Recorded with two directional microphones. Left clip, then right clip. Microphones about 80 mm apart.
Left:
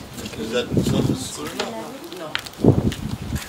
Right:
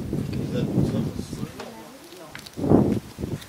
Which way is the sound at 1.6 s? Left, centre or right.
Left.